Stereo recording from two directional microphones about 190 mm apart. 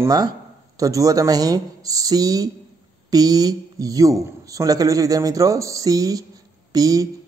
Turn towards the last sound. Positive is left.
turn(degrees=-20)  # may be behind; listen again after turning